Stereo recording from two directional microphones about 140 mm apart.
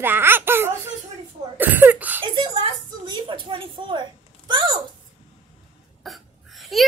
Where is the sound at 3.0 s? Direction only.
35° right (ahead or behind).